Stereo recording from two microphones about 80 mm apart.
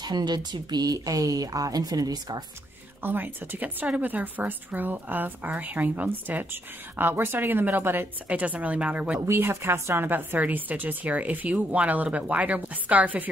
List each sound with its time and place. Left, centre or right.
0.0 s speech: right
3.0 s speech: right
9.3 s speech: right